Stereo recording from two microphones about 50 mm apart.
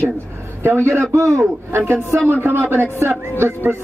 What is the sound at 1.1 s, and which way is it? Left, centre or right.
Speech, right.